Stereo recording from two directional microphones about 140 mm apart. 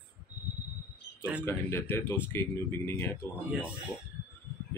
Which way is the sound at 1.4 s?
15° left (ahead or behind).